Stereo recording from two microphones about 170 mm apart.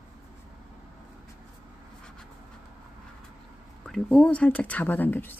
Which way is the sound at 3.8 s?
Centre (ahead or behind).